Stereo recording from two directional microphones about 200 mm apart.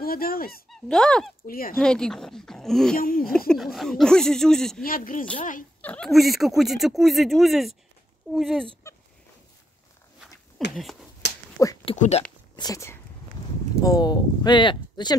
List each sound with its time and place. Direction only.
0.0 s speech: 50° left (ahead or behind)
0.7 s speech: 5° left (ahead or behind)
1.5 s speech: 45° left (ahead or behind)
1.8 s speech: 5° left (ahead or behind)
3.0 s speech: 45° left (ahead or behind)
3.4 s speech: centre (ahead or behind)
4.8 s speech: 45° left (ahead or behind)
5.8 s speech: 5° left (ahead or behind)
8.8 s a sound: 15° left (ahead or behind)
10.8 s speech: centre (ahead or behind)
11.9 s speech: 25° left (ahead or behind)